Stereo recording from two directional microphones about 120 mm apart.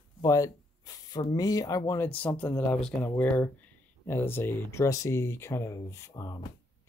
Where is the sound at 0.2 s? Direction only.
30° left (ahead or behind).